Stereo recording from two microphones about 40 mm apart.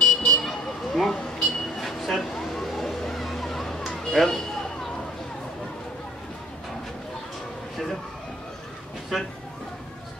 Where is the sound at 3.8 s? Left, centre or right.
Centre.